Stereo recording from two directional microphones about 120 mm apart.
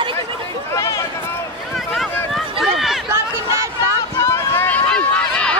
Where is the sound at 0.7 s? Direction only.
25° left (ahead or behind).